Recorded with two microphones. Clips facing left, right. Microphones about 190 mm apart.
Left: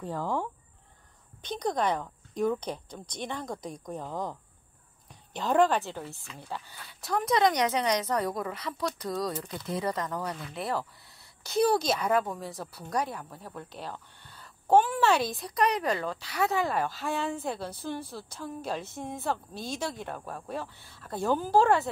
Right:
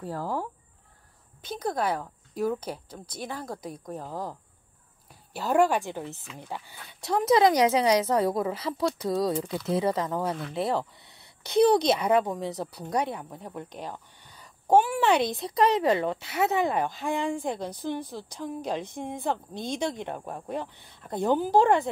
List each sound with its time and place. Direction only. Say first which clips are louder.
0.0 s a woman's voice: even; 5° right (ahead or behind)
7.2 s speech: right 5 dB; 30° right (ahead or behind)
12.0 s a woman's voice: right 4 dB; 20° right (ahead or behind)